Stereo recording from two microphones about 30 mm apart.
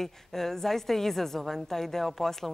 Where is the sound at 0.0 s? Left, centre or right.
Centre.